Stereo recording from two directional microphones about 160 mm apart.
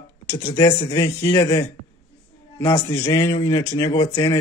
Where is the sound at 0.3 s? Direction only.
20° left (ahead or behind).